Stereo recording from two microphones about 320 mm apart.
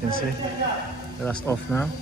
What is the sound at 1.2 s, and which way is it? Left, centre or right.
Speech, centre.